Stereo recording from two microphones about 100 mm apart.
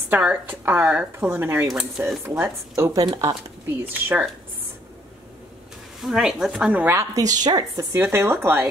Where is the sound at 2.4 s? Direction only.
30° right (ahead or behind).